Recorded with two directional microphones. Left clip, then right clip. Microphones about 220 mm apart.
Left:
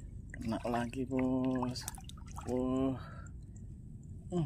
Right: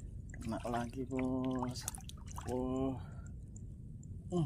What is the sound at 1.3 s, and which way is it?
Speech, 5° right (ahead or behind).